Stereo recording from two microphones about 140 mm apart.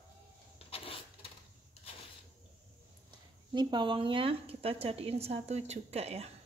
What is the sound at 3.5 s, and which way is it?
A woman's voice, 35° right (ahead or behind).